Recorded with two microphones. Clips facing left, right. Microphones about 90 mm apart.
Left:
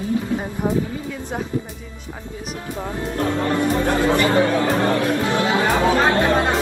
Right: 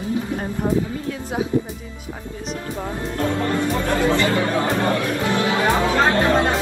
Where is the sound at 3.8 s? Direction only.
20° left (ahead or behind).